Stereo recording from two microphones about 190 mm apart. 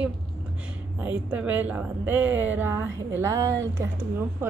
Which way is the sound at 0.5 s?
5° right (ahead or behind).